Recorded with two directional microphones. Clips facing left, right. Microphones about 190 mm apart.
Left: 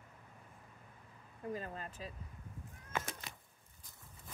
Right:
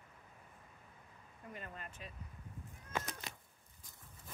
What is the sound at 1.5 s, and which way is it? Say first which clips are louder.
Speech: left 6 dB; 35° left (ahead or behind).